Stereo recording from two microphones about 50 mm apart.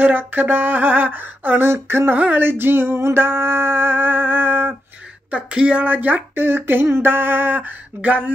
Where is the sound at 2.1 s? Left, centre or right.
Right.